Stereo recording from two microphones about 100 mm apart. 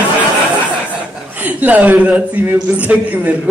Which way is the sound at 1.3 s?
15° right (ahead or behind).